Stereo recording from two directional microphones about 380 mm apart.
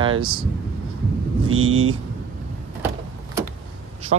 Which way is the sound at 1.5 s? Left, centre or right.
Right.